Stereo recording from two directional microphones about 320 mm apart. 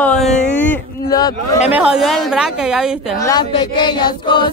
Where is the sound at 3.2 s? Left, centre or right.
Centre.